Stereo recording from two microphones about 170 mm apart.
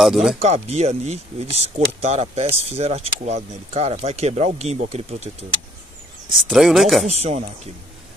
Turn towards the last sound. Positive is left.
turn(degrees=-40)  # may be behind; listen again after turning